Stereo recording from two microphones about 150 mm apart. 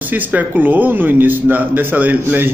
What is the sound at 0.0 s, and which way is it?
A man's voice, 10° right (ahead or behind).